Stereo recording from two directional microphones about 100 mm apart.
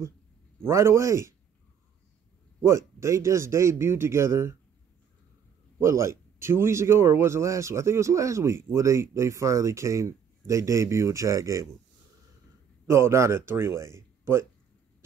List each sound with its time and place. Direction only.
0.7 s a man's voice: 30° right (ahead or behind)
2.6 s a man's voice: 30° right (ahead or behind)
5.8 s a man's voice: 30° right (ahead or behind)
12.9 s a man's voice: 25° right (ahead or behind)